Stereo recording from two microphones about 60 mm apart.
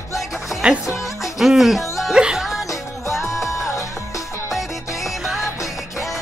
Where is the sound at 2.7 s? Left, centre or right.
Left.